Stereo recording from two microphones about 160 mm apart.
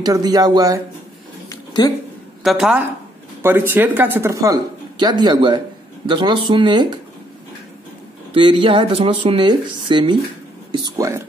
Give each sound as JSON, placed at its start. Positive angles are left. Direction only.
{"t": 0.0, "sound": "speech", "side_deg": -25}
{"t": 1.5, "sound": "a sound", "side_deg": 20}
{"t": 2.4, "sound": "a woman's voice", "side_deg": -5}
{"t": 3.4, "sound": "speech", "side_deg": -15}
{"t": 8.4, "sound": "speech", "side_deg": -35}